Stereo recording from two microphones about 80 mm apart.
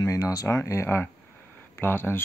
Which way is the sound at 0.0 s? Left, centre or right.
Left.